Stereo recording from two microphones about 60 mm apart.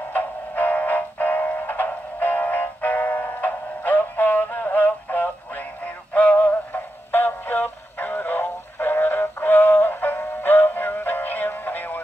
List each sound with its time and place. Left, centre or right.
0.1 s music: left
6.1 s synthetic singing: left